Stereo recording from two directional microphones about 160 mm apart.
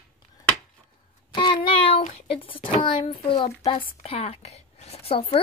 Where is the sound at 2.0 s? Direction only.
35° left (ahead or behind).